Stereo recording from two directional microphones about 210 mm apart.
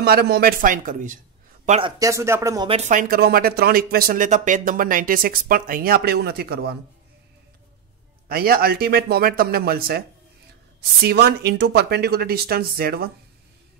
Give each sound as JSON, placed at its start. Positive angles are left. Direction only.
{"t": 0.0, "sound": "speech", "side_deg": -50}
{"t": 1.7, "sound": "speech", "side_deg": -25}
{"t": 2.7, "sound": "speech", "side_deg": -35}
{"t": 8.3, "sound": "speech", "side_deg": -45}